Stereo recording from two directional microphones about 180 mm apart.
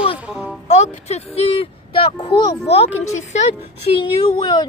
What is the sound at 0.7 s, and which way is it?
Speech, 40° left (ahead or behind).